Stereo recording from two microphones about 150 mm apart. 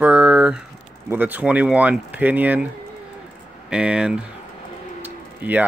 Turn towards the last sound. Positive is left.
turn(degrees=-10)  # may be behind; listen again after turning